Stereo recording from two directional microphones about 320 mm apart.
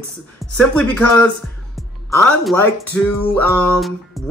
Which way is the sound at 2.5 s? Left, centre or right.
Centre.